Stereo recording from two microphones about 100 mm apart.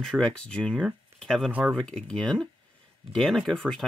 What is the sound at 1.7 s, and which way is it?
Speech, 5° left (ahead or behind).